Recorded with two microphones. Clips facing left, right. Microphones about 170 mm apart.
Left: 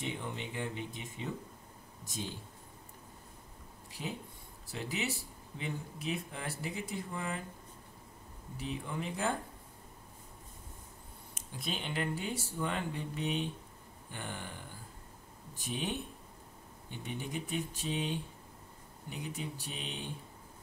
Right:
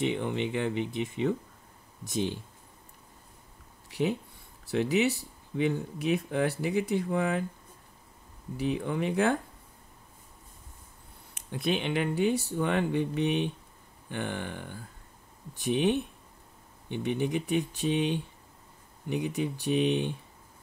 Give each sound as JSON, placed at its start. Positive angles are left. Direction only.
{"t": 0.0, "sound": "speech", "side_deg": -75}
{"t": 3.9, "sound": "speech", "side_deg": -70}
{"t": 8.5, "sound": "speech", "side_deg": -70}
{"t": 11.3, "sound": "speech", "side_deg": -65}